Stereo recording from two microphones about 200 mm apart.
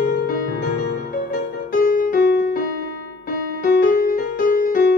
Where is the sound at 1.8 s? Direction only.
45° left (ahead or behind).